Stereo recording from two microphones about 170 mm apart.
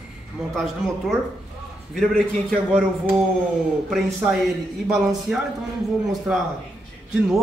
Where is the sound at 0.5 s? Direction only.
Centre (ahead or behind).